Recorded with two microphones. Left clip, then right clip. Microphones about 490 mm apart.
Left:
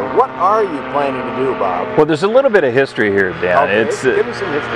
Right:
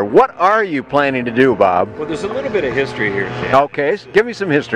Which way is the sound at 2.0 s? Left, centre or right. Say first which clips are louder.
Left 9 dB; left.